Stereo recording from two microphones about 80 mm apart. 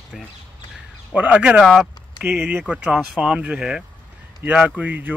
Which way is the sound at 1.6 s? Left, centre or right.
Centre.